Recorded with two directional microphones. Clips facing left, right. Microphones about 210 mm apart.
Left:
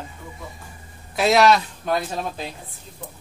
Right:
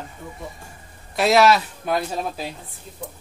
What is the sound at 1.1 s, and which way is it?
A man's voice, centre (ahead or behind).